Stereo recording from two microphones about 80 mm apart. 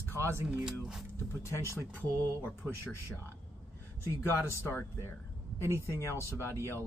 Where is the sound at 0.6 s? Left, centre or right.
Centre.